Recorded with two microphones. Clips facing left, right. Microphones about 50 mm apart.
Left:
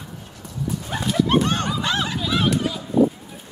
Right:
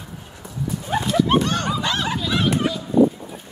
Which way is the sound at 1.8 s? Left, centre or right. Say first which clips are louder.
Even; centre.